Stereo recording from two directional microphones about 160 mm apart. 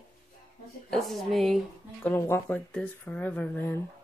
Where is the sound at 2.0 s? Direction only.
15° left (ahead or behind).